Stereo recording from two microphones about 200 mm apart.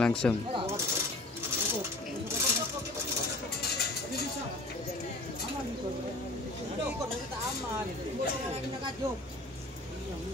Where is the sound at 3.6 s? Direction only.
55° left (ahead or behind).